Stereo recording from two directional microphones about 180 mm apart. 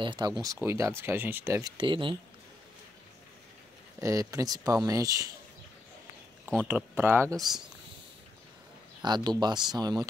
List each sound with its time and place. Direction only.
0.0 s speech: 25° right (ahead or behind)
1.8 s speech: 30° right (ahead or behind)
4.0 s speech: 20° right (ahead or behind)
6.7 s speech: 10° right (ahead or behind)
7.3 s speech: centre (ahead or behind)
9.0 s speech: 25° right (ahead or behind)